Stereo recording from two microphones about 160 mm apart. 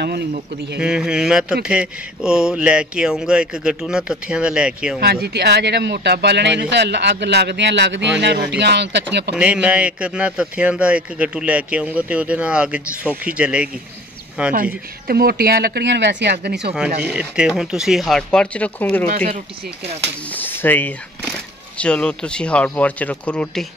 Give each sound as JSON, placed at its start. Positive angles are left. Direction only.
{"t": 0.0, "sound": "speech", "side_deg": -90}
{"t": 0.7, "sound": "speech", "side_deg": -5}
{"t": 5.0, "sound": "speech", "side_deg": -85}
{"t": 9.3, "sound": "a man's voice", "side_deg": -5}
{"t": 14.5, "sound": "speech", "side_deg": -65}
{"t": 17.0, "sound": "a man's voice", "side_deg": -5}
{"t": 19.1, "sound": "speech", "side_deg": -50}
{"t": 20.2, "sound": "speech", "side_deg": 10}